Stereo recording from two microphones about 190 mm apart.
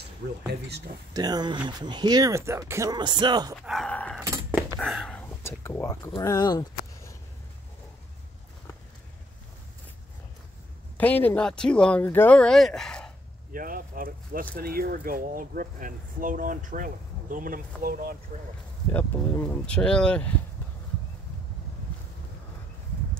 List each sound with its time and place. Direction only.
0.5 s speech: 60° right (ahead or behind)
1.1 s speech: 20° right (ahead or behind)
3.5 s speech: centre (ahead or behind)
4.2 s a sound: 15° right (ahead or behind)
4.7 s speech: 5° left (ahead or behind); by 7.2 s 20° left (ahead or behind)
11.0 s speech: 10° left (ahead or behind)
13.5 s speech: 45° right (ahead or behind)
18.9 s speech: 10° left (ahead or behind)